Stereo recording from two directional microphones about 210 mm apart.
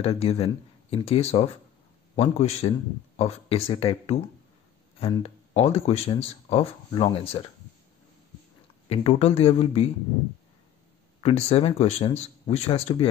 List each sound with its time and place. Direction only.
0.0 s speech: 30° left (ahead or behind)
8.8 s speech: 30° left (ahead or behind)
11.1 s speech: 30° left (ahead or behind)